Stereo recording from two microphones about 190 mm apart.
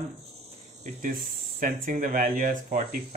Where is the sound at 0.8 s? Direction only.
45° right (ahead or behind).